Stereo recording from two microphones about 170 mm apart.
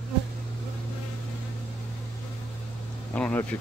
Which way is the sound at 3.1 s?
10° left (ahead or behind).